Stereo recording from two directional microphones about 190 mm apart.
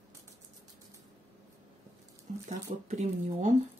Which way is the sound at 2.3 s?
40° right (ahead or behind).